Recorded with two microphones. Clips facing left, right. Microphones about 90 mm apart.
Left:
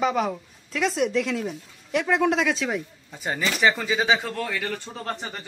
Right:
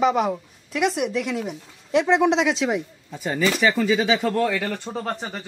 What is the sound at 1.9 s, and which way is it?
Speech, 25° right (ahead or behind).